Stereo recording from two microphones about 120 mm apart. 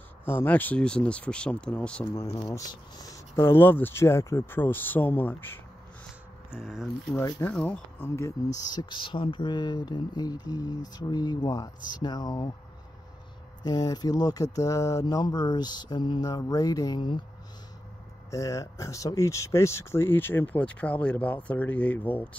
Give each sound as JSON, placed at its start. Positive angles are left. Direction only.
{"t": 0.2, "sound": "speech", "side_deg": 20}
{"t": 2.1, "sound": "speech", "side_deg": 25}
{"t": 6.5, "sound": "speech", "side_deg": 0}
{"t": 7.3, "sound": "speech", "side_deg": 10}
{"t": 8.5, "sound": "speech", "side_deg": 35}
{"t": 13.7, "sound": "speech", "side_deg": 35}
{"t": 18.3, "sound": "speech", "side_deg": 25}